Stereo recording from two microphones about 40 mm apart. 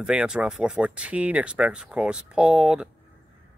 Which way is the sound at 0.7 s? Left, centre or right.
Right.